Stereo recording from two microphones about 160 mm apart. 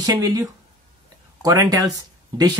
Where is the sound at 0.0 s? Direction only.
25° right (ahead or behind).